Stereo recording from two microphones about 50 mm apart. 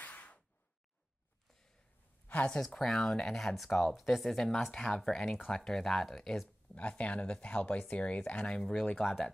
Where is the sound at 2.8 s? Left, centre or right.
Centre.